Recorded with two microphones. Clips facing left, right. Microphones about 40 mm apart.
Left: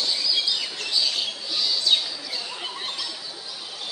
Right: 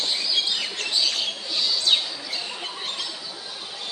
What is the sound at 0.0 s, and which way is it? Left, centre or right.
Bird, right.